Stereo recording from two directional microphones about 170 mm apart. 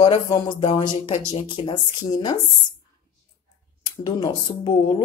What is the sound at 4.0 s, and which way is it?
Speech, 25° left (ahead or behind).